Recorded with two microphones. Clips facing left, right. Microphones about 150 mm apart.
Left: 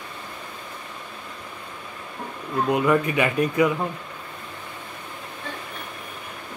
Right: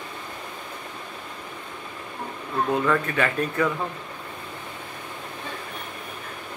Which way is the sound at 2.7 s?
15° left (ahead or behind).